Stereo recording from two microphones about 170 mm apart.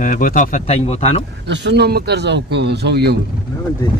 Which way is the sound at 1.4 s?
90° right.